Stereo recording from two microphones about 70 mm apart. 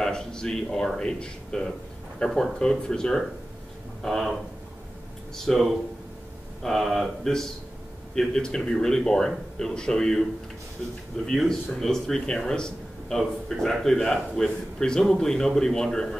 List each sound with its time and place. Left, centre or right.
0.0 s a man's voice: centre
11.2 s a man's voice: centre